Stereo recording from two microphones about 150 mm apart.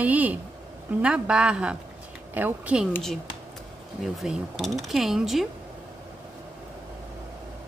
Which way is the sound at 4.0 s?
Centre (ahead or behind).